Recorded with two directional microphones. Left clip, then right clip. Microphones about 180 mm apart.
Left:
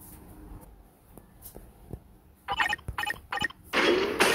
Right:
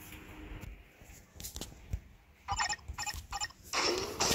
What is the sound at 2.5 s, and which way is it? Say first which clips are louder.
Mechanisms: left 7 dB; centre (ahead or behind).